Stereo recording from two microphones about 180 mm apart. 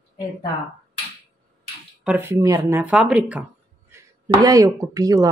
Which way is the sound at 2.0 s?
10° right (ahead or behind).